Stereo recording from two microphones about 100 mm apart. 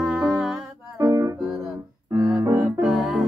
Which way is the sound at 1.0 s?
35° right (ahead or behind).